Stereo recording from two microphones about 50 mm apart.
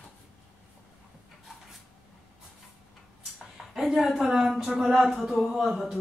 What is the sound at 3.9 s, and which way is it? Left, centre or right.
Speech, centre.